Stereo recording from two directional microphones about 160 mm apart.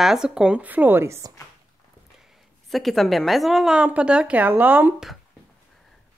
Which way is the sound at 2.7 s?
Centre (ahead or behind).